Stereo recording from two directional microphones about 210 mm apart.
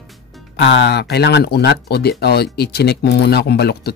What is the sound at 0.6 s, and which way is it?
Speech, 55° left (ahead or behind).